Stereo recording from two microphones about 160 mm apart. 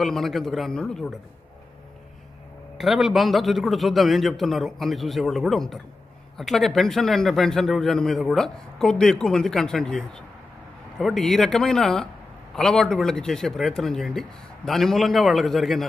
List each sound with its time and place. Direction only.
0.0 s a man's voice: centre (ahead or behind)
2.8 s a man's voice: centre (ahead or behind)